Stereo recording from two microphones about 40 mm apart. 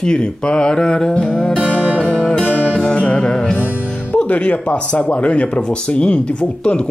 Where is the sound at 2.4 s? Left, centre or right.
Left.